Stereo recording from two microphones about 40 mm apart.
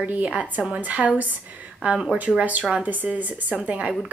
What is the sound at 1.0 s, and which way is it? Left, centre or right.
Speech, right.